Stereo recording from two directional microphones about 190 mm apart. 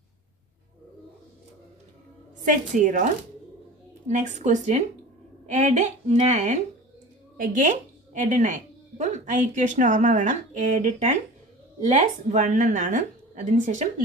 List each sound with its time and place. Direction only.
2.4 s a woman's voice: 45° right (ahead or behind)
4.1 s a woman's voice: 40° right (ahead or behind)